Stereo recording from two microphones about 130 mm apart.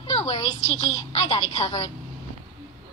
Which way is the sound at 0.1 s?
55° left (ahead or behind).